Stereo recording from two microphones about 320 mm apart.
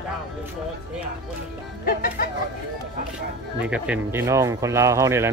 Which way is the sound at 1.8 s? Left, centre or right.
Left.